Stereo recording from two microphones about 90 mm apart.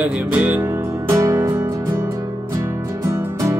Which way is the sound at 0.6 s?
35° right (ahead or behind).